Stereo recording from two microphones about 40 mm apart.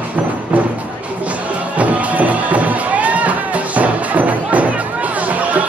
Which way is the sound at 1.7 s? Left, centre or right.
Right.